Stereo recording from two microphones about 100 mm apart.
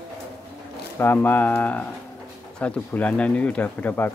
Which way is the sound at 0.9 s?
20° left (ahead or behind).